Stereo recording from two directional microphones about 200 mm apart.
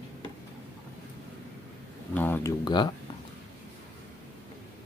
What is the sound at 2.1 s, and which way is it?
Speech, 10° left (ahead or behind).